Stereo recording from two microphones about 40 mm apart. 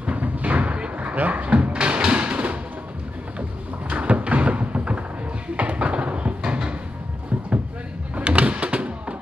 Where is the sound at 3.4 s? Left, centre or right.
Right.